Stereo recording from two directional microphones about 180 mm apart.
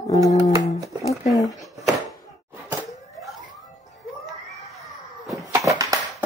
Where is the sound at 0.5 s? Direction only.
15° right (ahead or behind).